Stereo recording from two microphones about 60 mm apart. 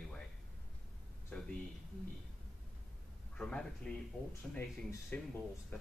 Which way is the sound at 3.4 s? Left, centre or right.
Centre.